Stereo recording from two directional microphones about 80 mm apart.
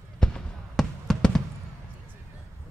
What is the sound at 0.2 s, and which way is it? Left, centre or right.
Fireworks, centre.